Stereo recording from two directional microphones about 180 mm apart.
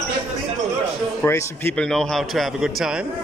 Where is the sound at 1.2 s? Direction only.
15° left (ahead or behind); by 3.1 s 5° right (ahead or behind).